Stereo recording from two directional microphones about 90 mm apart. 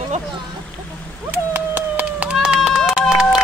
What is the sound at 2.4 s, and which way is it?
Run, 10° right (ahead or behind).